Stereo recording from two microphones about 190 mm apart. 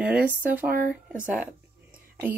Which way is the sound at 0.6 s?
45° right (ahead or behind).